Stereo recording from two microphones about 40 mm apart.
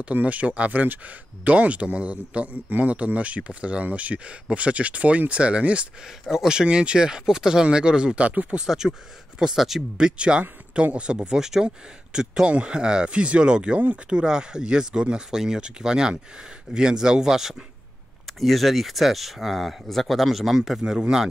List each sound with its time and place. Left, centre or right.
0.0 s speech: right
6.3 s speech: centre; by 8.5 s right
8.6 s speech: centre
10.1 s speech: right; by 17.6 s centre
18.2 s speech: centre